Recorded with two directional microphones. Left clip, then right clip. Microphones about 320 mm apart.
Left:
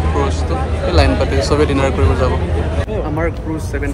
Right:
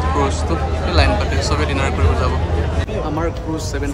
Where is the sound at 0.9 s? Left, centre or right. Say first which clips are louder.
Left 3 dB; centre.